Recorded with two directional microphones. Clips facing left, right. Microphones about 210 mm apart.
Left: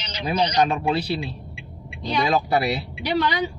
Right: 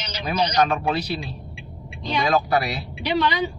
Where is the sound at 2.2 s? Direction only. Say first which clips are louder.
Even; 25° left (ahead or behind).